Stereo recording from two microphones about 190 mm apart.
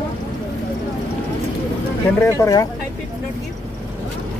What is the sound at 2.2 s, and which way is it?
Speech, 20° left (ahead or behind).